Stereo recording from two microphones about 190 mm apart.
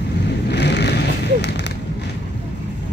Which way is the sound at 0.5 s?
65° left (ahead or behind).